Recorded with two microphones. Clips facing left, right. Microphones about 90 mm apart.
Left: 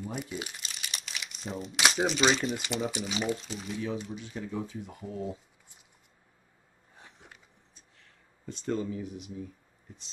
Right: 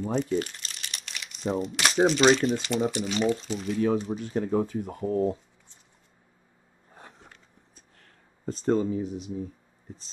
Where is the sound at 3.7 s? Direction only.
45° right (ahead or behind).